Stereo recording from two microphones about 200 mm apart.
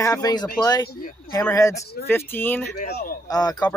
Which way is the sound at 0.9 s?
45° left (ahead or behind).